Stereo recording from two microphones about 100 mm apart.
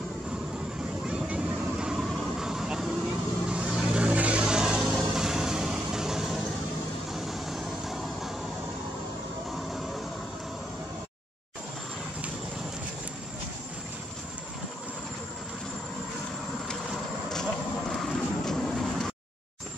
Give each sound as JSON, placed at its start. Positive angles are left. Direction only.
{"t": 1.0, "sound": "vehicle", "side_deg": -10}
{"t": 16.9, "sound": "vehicle", "side_deg": 5}